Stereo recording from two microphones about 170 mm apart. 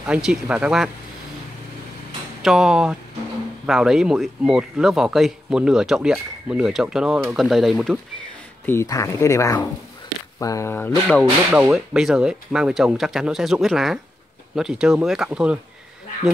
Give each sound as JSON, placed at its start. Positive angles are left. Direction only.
{"t": 0.0, "sound": "speech", "side_deg": -5}
{"t": 2.4, "sound": "speech", "side_deg": 0}
{"t": 8.6, "sound": "speech", "side_deg": 15}
{"t": 11.5, "sound": "speech", "side_deg": -5}